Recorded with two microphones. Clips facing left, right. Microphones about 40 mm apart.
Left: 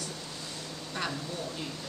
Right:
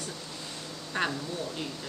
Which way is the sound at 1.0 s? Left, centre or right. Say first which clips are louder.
Right 5 dB; right.